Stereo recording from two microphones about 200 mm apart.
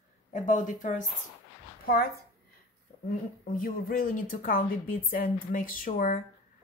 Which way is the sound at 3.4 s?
45° left (ahead or behind).